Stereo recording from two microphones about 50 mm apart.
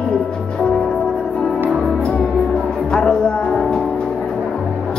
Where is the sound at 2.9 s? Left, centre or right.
Centre.